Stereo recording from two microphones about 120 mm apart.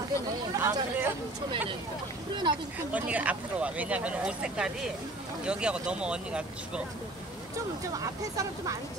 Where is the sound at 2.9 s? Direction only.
10° right (ahead or behind).